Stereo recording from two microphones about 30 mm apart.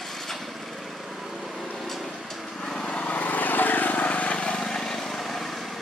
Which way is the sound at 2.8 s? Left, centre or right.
Left.